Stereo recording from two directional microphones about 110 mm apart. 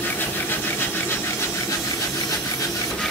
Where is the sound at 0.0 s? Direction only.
20° left (ahead or behind).